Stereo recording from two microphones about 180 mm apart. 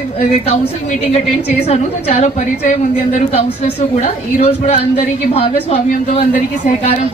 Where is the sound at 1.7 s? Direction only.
35° left (ahead or behind).